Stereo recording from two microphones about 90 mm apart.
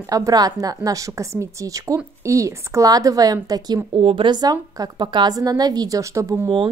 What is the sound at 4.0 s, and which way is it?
Speech, 75° right (ahead or behind).